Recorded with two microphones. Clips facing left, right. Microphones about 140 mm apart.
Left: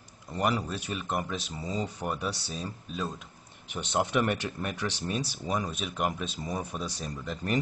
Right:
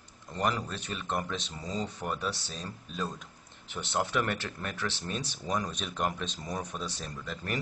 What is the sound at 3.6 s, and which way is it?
Speech, 15° left (ahead or behind).